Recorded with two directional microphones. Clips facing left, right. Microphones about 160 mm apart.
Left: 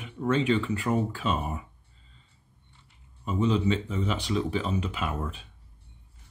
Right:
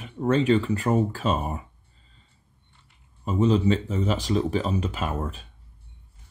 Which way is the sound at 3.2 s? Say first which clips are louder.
Right 4 dB; 40° right (ahead or behind).